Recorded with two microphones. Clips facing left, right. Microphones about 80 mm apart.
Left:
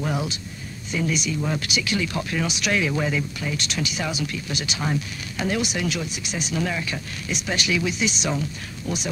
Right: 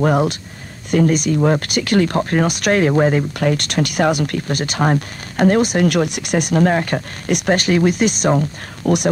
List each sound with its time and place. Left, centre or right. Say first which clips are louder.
0.0 s speech: right 11 dB; right